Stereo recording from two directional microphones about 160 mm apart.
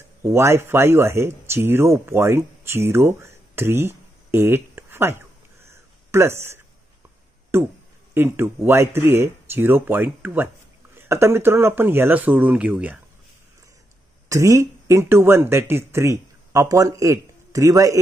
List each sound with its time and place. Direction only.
0.2 s speech: 15° right (ahead or behind)
14.3 s speech: 20° right (ahead or behind)